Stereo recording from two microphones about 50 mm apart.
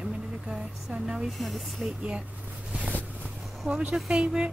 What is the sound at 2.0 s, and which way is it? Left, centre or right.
Speech, right.